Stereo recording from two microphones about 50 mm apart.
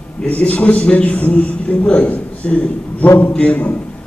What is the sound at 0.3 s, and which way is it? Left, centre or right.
A man's voice, left.